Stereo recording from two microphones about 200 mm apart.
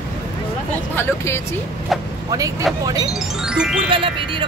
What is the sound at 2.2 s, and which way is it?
Speech, 20° right (ahead or behind).